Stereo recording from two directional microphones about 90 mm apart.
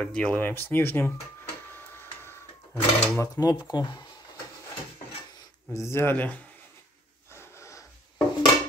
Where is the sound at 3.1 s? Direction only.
40° left (ahead or behind).